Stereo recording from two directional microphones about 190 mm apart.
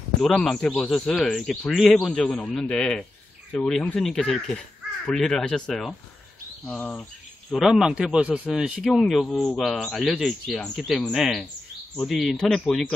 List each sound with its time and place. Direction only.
0.2 s speech: 5° left (ahead or behind)